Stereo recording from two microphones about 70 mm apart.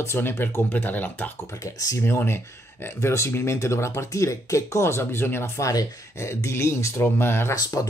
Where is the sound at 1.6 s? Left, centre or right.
Left.